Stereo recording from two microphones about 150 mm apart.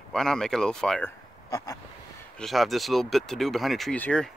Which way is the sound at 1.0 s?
20° left (ahead or behind).